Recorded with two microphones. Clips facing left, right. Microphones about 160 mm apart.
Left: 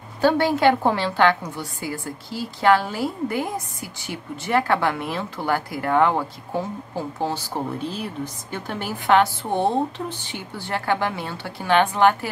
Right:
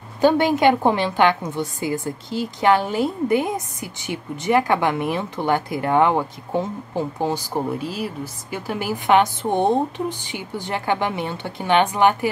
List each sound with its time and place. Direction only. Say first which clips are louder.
0.2 s a woman's voice: right 2 dB; 15° right (ahead or behind)